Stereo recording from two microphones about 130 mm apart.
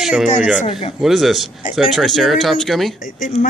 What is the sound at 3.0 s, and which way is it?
Speech, 80° left.